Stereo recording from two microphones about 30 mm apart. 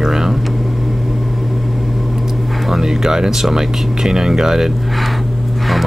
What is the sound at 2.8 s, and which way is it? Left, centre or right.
Speech, centre.